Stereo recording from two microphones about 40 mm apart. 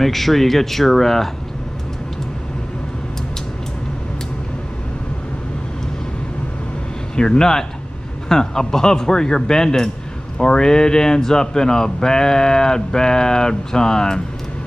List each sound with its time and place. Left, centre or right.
0.0 s speech: centre
7.2 s speech: centre